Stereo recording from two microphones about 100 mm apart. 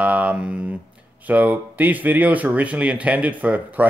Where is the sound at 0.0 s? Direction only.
15° right (ahead or behind).